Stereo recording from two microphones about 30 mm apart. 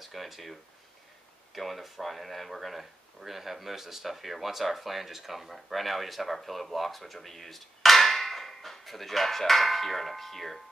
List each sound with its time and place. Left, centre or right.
0.0 s speech: centre